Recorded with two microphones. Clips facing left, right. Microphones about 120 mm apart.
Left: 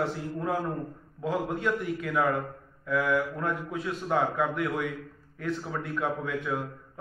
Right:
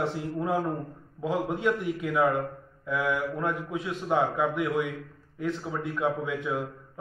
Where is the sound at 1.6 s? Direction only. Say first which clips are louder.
Right 2 dB; 15° right (ahead or behind).